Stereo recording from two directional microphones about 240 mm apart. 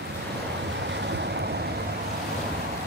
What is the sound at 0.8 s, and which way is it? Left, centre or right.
Waves, right.